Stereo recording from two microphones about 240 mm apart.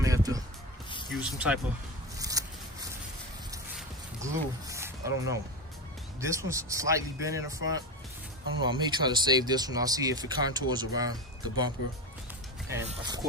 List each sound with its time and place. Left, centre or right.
0.0 s music: centre
1.1 s speech: centre
2.1 s a sound: centre
4.2 s speech: centre
12.8 s speech: centre